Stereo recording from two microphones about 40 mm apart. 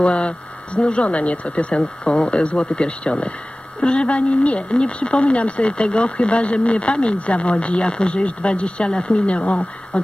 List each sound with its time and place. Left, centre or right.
0.0 s speech: left